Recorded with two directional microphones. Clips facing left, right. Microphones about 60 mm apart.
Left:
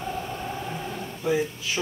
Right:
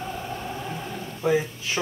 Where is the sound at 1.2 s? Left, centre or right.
Right.